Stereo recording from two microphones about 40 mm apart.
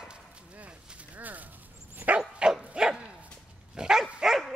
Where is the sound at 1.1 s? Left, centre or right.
Right.